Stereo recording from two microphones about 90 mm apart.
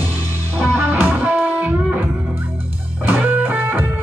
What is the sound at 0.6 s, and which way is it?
Music, 20° right (ahead or behind).